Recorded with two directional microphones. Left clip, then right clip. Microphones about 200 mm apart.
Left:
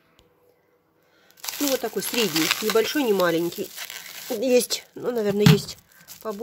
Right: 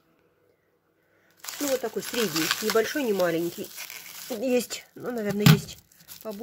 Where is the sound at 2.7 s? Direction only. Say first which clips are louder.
Left 3 dB; 20° left (ahead or behind).